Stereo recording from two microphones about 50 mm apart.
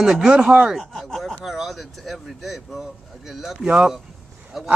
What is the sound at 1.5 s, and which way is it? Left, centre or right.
Speech, centre.